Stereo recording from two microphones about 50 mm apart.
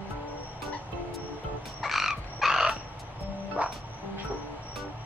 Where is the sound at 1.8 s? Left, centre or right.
Centre.